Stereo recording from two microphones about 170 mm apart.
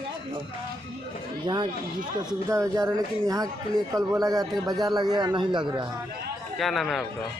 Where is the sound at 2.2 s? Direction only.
20° right (ahead or behind).